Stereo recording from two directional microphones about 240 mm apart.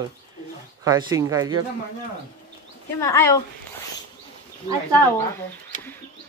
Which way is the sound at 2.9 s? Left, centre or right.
Centre.